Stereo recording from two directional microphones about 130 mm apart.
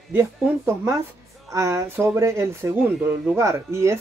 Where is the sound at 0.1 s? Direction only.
20° right (ahead or behind).